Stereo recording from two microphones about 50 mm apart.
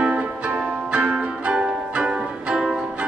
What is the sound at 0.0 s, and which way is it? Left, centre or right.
Music, right.